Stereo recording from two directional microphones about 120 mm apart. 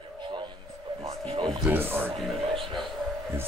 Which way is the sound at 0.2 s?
40° right (ahead or behind).